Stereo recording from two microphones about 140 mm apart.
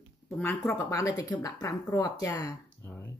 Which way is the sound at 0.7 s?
20° left (ahead or behind).